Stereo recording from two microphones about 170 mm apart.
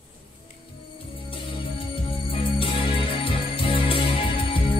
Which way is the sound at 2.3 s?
30° left (ahead or behind).